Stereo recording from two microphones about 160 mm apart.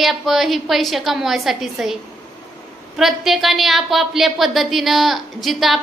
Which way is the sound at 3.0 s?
Centre (ahead or behind).